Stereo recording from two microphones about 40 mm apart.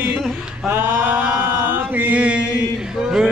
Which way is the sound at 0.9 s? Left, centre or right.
Right.